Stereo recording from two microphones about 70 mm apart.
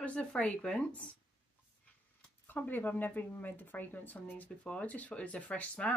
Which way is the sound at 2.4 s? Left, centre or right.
Left.